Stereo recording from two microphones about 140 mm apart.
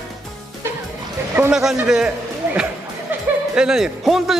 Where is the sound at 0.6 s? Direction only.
15° right (ahead or behind).